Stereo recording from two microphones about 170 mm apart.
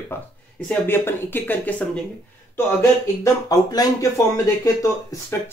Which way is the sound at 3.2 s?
20° left (ahead or behind).